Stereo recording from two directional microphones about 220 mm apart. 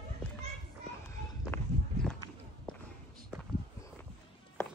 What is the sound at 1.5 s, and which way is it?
Walk, 10° left (ahead or behind).